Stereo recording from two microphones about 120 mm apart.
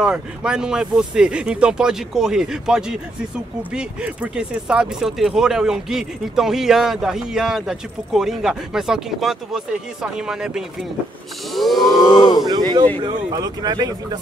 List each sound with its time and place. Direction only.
0.0 s speech: 5° right (ahead or behind)
11.9 s speech: 35° left (ahead or behind)
12.4 s speech: 35° right (ahead or behind)